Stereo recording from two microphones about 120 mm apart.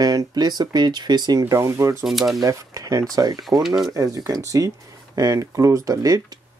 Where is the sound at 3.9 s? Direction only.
30° right (ahead or behind).